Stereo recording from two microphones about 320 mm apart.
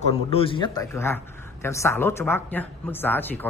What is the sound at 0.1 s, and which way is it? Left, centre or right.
A man's voice, centre.